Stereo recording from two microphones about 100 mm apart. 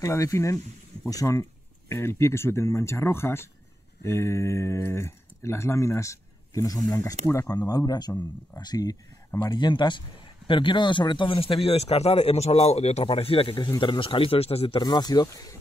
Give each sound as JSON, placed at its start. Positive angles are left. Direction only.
{"t": 0.0, "sound": "speech", "side_deg": 30}
{"t": 13.7, "sound": "speech", "side_deg": 55}
{"t": 14.8, "sound": "speech", "side_deg": 45}